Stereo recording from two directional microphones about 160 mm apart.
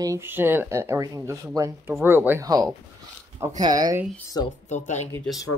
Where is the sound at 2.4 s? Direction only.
25° right (ahead or behind).